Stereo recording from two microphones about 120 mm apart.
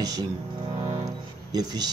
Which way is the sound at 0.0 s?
30° right (ahead or behind).